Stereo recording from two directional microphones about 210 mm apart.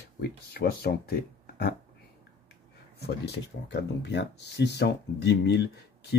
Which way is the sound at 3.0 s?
55° left (ahead or behind).